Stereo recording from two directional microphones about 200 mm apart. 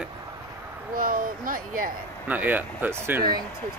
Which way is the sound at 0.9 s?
45° right (ahead or behind).